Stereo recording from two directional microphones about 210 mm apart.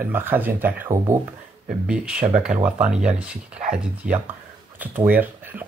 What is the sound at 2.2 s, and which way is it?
Speech, 30° right (ahead or behind).